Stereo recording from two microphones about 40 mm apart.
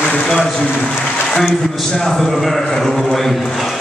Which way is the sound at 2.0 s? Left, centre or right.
Centre.